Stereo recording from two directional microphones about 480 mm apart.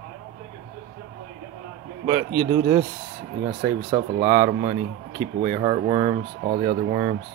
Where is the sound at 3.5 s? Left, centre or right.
Centre.